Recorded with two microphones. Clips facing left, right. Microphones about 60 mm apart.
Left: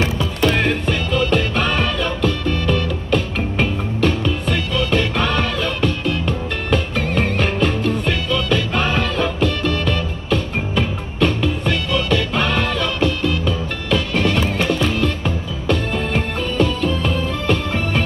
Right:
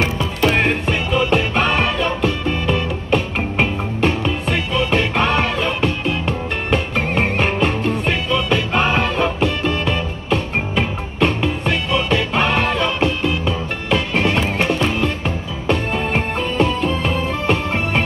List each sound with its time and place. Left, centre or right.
0.6 s music: right